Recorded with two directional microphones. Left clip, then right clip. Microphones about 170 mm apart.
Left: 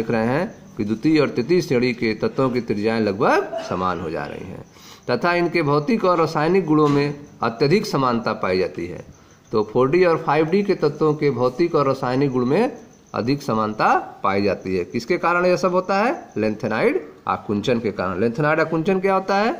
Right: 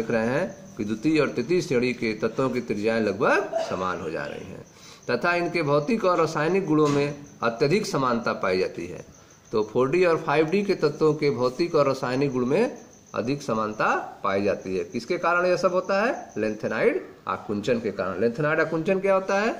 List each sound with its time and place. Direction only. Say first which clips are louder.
0.0 s speech: left 3 dB; 35° left (ahead or behind)